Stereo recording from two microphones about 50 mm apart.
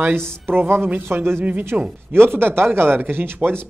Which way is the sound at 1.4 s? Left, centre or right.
Right.